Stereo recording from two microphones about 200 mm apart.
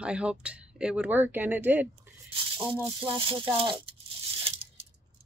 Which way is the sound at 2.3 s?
25° right (ahead or behind).